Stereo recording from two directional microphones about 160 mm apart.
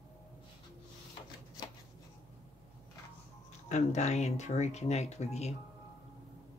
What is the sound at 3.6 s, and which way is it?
Speech, 45° left (ahead or behind).